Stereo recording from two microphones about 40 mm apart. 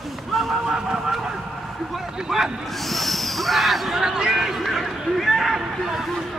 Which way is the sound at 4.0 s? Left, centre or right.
Centre.